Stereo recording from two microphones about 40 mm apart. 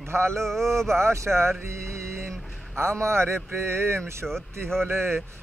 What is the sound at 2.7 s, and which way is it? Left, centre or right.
Speech, right.